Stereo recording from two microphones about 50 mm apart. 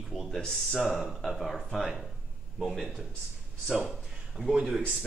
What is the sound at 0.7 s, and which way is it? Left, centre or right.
Speech, centre.